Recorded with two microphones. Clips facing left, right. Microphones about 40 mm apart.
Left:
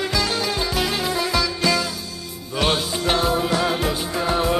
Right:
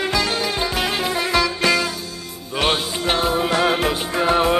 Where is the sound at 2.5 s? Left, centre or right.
Right.